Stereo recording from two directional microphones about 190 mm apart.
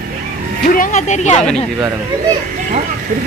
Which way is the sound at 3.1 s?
45° right (ahead or behind).